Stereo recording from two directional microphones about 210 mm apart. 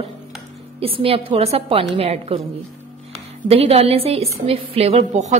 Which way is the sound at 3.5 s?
30° right (ahead or behind).